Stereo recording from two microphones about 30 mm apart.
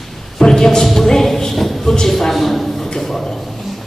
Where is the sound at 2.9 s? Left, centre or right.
Centre.